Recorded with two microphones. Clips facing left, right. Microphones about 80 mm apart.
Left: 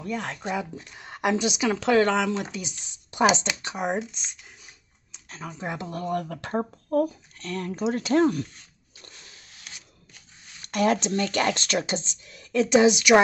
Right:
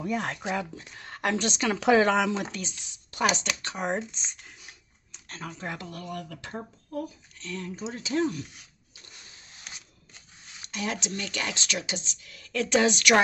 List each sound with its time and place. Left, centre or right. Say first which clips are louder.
0.0 s speech: right 1 dB; centre
0.9 s a woman's voice: left 4 dB; centre
1.8 s speech: right 1 dB; centre
3.1 s speech: left 5 dB; left
3.7 s speech: left 2 dB; centre; by 8.5 s left
10.7 s speech: left 10 dB; left; by 13.0 s centre